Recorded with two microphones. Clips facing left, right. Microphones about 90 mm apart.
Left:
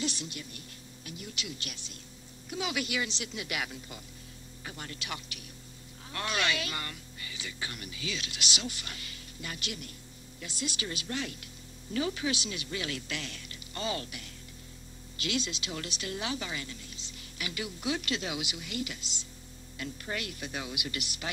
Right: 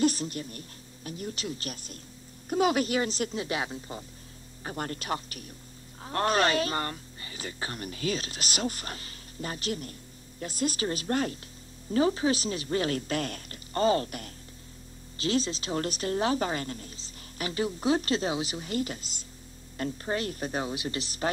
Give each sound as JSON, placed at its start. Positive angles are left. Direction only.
{"t": 0.0, "sound": "a woman's voice", "side_deg": -40}
{"t": 4.6, "sound": "a woman's voice", "side_deg": -45}